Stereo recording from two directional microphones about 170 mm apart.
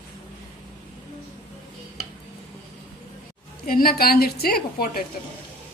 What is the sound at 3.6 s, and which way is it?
A woman's voice, 60° left (ahead or behind).